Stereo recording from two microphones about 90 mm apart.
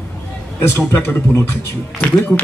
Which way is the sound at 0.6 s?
25° left (ahead or behind).